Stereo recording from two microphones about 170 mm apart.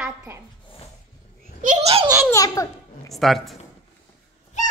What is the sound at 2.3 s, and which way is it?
Speech, 20° left (ahead or behind).